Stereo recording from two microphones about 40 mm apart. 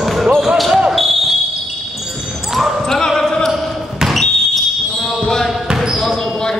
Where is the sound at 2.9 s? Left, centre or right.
Centre.